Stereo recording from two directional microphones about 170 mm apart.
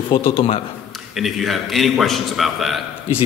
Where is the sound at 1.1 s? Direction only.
Centre (ahead or behind).